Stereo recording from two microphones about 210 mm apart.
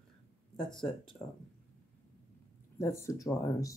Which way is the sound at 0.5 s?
5° left (ahead or behind).